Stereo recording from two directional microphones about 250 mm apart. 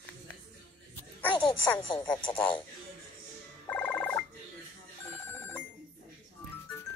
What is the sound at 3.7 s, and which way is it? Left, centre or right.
Music, centre.